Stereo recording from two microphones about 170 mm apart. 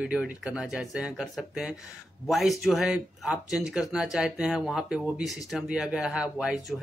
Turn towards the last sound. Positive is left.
turn(degrees=-5)  # may be behind; listen again after turning